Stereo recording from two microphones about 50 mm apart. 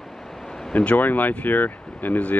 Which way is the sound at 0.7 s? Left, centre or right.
Left.